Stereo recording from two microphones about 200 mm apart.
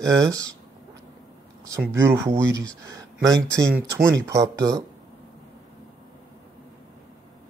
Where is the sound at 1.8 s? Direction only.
10° right (ahead or behind).